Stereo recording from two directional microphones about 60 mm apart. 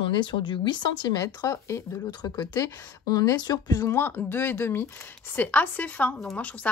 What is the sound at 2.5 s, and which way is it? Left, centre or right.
Speech, left.